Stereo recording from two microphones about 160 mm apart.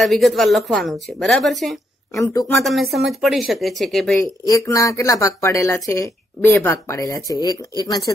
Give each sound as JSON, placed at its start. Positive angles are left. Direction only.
{"t": 0.0, "sound": "speech", "side_deg": 0}
{"t": 2.1, "sound": "speech", "side_deg": 20}
{"t": 2.6, "sound": "speech", "side_deg": 0}
{"t": 4.5, "sound": "speech", "side_deg": 20}